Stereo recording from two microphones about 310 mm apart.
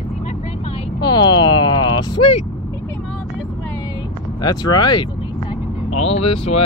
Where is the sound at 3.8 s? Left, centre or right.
Centre.